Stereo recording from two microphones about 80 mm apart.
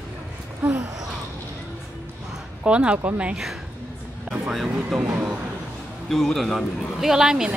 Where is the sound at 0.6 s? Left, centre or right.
Right.